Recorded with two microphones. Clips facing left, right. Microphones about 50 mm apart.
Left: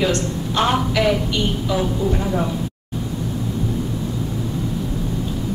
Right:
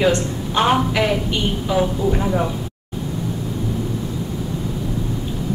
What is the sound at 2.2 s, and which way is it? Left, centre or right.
Speech, centre.